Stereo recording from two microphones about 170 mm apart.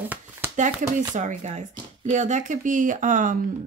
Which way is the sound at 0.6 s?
45° right (ahead or behind).